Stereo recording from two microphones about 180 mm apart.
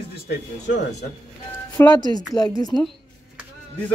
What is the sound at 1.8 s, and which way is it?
Speech, 15° left (ahead or behind).